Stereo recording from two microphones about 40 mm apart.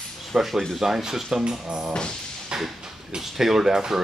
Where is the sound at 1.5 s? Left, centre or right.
Centre.